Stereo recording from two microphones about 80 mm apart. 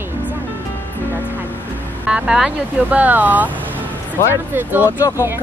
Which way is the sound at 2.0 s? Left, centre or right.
Centre.